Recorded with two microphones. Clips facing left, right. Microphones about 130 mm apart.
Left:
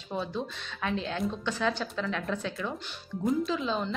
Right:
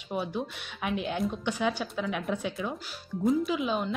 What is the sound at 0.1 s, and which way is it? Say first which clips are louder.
Speech: right 1 dB; 15° right (ahead or behind).